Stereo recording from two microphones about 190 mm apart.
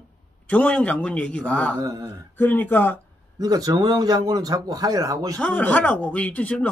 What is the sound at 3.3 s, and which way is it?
A man's voice, 20° right (ahead or behind).